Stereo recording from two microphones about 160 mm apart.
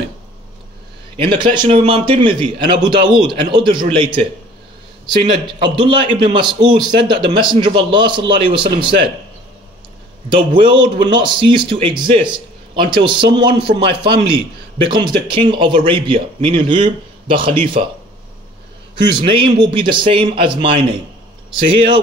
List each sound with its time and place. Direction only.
1.1 s a man's voice: 30° right (ahead or behind)
5.5 s a man's voice: 30° right (ahead or behind)
10.6 s a man's voice: 30° right (ahead or behind)
19.0 s a man's voice: 30° right (ahead or behind)